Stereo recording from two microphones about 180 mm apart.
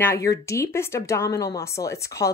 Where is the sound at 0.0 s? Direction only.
15° left (ahead or behind).